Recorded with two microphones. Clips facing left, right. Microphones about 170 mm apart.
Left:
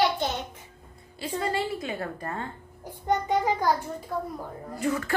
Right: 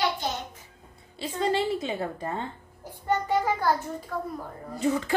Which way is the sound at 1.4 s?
20° right (ahead or behind).